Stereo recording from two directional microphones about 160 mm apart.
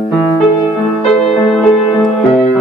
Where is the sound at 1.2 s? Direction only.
40° left (ahead or behind).